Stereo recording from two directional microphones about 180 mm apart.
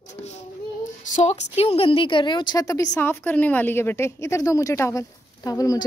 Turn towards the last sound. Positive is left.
turn(degrees=20)  # may be behind; listen again after turning